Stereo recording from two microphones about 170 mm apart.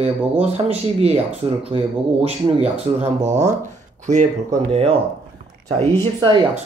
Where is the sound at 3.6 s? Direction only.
45° right (ahead or behind).